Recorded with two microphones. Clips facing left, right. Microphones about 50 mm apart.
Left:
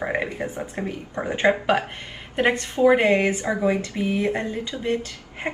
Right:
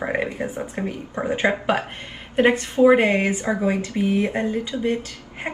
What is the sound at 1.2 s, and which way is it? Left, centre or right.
Speech, centre.